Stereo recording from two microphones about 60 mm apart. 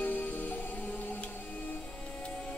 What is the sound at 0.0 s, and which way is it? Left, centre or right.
Music, left.